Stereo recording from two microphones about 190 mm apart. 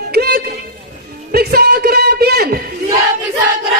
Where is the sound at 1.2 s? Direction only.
55° right (ahead or behind).